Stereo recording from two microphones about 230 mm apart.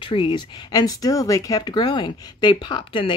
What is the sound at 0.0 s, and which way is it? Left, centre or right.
Speech, left.